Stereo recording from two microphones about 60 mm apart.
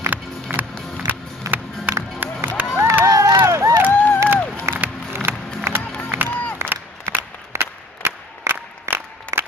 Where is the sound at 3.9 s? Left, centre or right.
Left.